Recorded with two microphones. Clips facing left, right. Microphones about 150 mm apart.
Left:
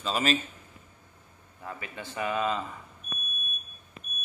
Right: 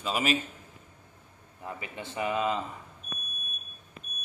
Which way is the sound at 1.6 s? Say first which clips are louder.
Right 1 dB; 20° right (ahead or behind).